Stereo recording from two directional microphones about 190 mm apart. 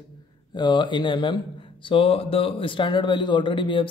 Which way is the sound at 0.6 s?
25° left (ahead or behind).